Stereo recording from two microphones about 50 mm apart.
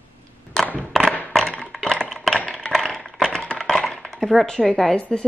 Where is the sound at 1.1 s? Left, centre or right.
Left.